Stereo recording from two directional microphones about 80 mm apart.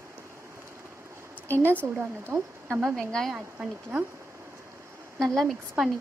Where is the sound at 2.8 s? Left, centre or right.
Centre.